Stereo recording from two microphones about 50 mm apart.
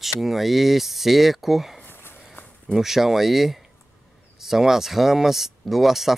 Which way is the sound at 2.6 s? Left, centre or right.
Centre.